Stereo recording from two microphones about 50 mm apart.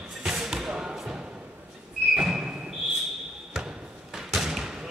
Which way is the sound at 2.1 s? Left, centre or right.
Centre.